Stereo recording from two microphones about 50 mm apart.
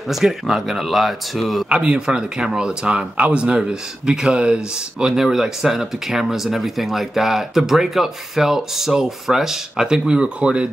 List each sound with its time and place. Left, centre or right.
0.1 s speech: centre
1.7 s speech: centre